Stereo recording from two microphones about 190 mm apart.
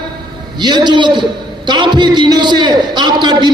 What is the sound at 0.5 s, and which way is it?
A man's voice, 25° right (ahead or behind).